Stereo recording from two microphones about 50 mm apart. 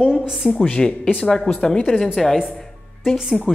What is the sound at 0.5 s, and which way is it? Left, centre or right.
Speech, centre.